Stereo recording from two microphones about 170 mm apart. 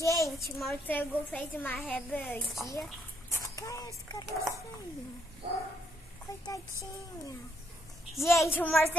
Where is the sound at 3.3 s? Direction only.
20° left (ahead or behind).